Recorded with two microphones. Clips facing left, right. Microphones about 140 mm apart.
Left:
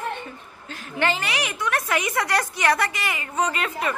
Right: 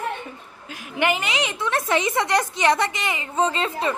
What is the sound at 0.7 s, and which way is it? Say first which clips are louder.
A woman's voice: right 2 dB; 15° right (ahead or behind).